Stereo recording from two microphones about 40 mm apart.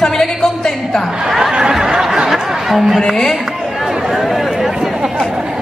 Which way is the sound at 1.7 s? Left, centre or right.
Centre.